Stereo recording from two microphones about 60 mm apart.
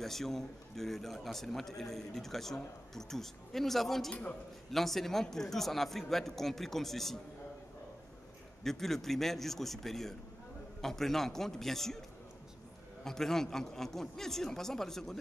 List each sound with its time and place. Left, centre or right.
0.0 s a man's voice: centre
4.1 s a man's voice: centre
4.7 s a man's voice: centre
8.6 s a man's voice: centre
13.0 s a man's voice: centre